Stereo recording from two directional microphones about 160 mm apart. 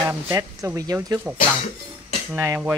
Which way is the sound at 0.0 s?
15° right (ahead or behind).